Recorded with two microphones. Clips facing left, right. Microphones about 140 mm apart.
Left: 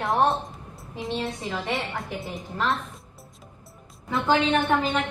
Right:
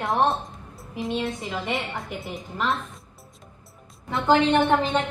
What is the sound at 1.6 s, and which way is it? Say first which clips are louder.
Speech: even; centre (ahead or behind).